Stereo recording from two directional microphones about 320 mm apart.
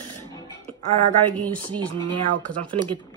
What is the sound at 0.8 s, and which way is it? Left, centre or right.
Speech, right.